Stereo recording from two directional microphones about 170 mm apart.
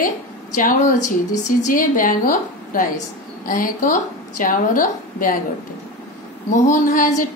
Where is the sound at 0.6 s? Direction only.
50° left (ahead or behind).